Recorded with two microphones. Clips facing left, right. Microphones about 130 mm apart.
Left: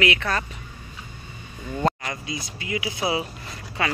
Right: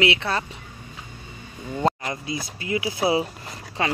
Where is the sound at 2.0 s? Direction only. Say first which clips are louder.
Right 2 dB; 30° right (ahead or behind).